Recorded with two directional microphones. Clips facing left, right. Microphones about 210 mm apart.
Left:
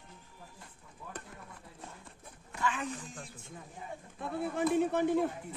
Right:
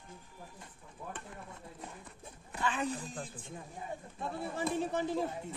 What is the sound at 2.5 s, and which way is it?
Speech, 30° right (ahead or behind).